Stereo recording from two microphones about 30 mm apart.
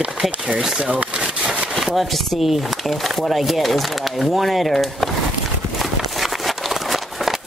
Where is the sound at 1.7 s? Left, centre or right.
Centre.